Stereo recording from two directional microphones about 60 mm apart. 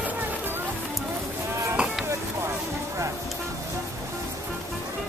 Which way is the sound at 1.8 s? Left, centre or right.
Centre.